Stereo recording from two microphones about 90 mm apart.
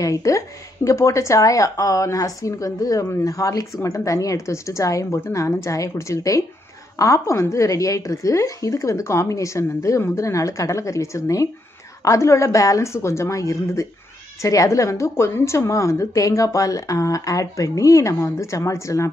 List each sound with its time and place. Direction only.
0.0 s a woman's voice: 40° left (ahead or behind)